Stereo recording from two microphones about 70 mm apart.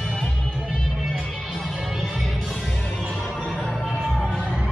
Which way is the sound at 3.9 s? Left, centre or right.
Centre.